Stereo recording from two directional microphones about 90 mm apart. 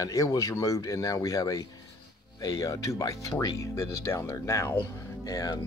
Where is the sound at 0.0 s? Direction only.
40° left (ahead or behind).